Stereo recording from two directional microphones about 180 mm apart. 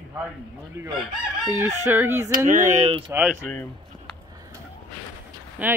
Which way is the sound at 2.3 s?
45° right (ahead or behind).